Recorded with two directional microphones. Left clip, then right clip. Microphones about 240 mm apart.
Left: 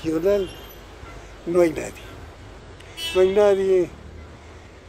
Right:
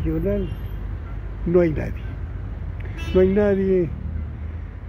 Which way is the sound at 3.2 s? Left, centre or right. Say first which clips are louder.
Left 1 dB; centre.